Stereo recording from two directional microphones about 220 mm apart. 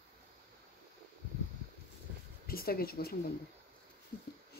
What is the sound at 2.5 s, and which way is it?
Speech, 45° left (ahead or behind).